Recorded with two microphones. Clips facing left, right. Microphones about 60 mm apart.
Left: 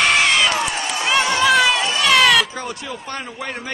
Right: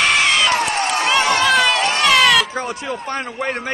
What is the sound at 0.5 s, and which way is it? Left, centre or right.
Run, right.